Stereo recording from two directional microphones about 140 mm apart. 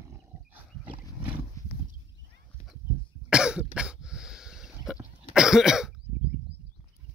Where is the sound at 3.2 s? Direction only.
5° right (ahead or behind).